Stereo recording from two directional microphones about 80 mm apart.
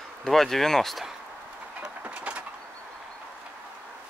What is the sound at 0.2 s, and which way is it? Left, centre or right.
Speech, centre.